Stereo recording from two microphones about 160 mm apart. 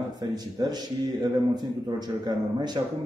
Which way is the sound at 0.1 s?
25° right (ahead or behind).